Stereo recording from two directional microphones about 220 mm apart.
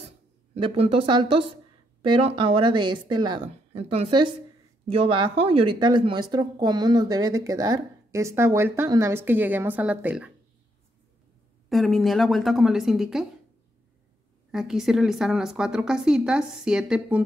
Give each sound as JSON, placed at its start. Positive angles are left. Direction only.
{"t": 0.6, "sound": "speech", "side_deg": -25}
{"t": 11.7, "sound": "a woman's voice", "side_deg": 0}
{"t": 14.5, "sound": "a woman's voice", "side_deg": 0}